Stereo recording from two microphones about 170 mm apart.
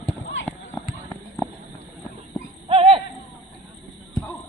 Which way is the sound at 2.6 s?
35° right (ahead or behind).